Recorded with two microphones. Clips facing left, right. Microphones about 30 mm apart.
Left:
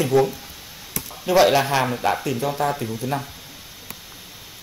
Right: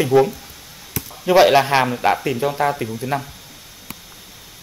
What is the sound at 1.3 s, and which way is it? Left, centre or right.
Speech, centre.